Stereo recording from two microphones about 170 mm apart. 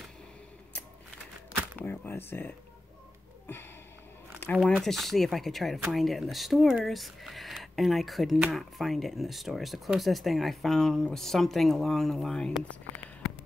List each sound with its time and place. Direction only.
1.8 s speech: 10° left (ahead or behind)
4.4 s speech: 5° left (ahead or behind)